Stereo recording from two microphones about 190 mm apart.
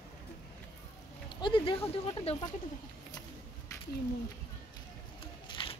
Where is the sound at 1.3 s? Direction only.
25° left (ahead or behind).